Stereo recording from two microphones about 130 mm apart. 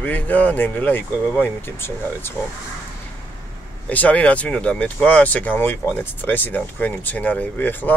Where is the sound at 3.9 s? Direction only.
10° left (ahead or behind).